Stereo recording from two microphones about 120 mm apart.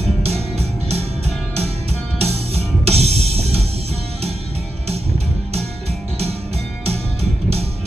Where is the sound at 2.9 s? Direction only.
60° right (ahead or behind).